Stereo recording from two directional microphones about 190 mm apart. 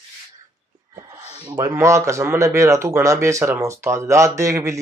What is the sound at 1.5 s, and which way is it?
Speech, 15° right (ahead or behind).